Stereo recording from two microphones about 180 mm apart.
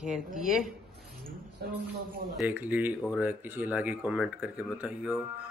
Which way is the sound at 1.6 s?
60° right (ahead or behind).